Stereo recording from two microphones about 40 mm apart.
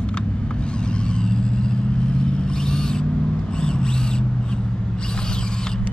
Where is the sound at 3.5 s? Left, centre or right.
Left.